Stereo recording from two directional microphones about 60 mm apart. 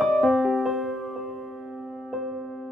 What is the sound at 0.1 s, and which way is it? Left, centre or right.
Music, centre.